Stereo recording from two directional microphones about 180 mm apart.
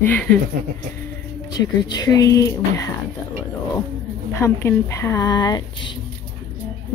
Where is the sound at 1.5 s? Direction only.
20° left (ahead or behind).